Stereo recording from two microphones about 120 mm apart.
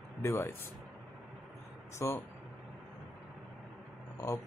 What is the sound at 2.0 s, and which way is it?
Speech, 25° left (ahead or behind).